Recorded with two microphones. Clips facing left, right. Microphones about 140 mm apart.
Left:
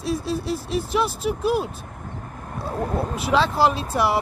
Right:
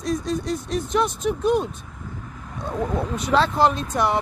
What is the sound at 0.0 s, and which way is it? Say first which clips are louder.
Speech: right 1 dB; 5° left (ahead or behind).